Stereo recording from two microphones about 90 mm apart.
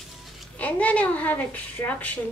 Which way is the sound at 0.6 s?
15° left (ahead or behind).